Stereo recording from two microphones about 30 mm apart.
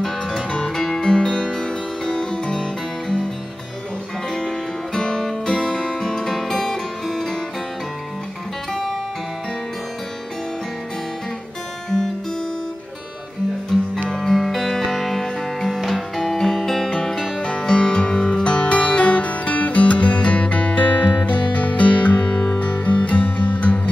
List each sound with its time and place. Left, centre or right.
0.0 s music: left
1.0 s music: left
2.5 s music: centre
4.3 s music: left
13.7 s music: centre
17.4 s music: left